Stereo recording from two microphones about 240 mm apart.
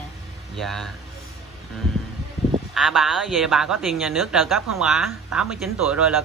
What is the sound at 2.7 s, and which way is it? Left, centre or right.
A woman's voice, centre.